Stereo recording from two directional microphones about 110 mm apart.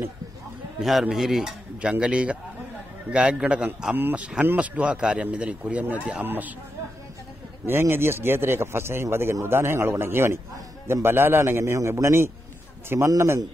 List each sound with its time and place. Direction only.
0.7 s speech: 5° right (ahead or behind)
7.6 s a man's voice: 20° right (ahead or behind)